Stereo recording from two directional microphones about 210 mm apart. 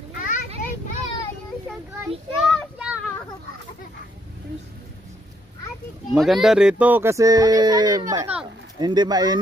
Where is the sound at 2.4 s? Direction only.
Centre (ahead or behind).